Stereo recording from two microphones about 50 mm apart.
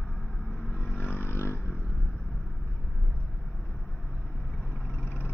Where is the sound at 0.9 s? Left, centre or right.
Left.